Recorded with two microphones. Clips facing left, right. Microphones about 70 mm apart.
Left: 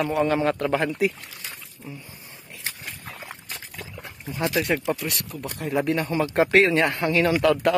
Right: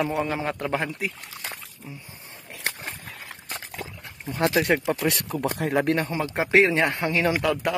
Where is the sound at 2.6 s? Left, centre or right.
Right.